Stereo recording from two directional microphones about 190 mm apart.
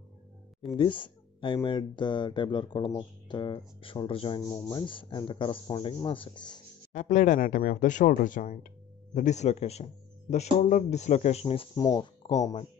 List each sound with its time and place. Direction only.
0.7 s speech: 25° left (ahead or behind)
6.9 s speech: 40° left (ahead or behind); by 12.5 s 20° left (ahead or behind)